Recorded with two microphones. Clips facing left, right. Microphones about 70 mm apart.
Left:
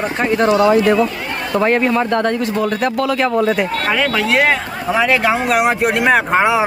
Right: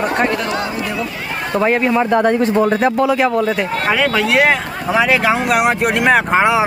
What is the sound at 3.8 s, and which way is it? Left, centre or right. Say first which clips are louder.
Speech: right 3 dB; centre.